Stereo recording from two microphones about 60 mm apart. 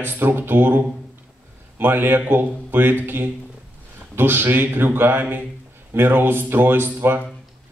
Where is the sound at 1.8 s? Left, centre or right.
Right.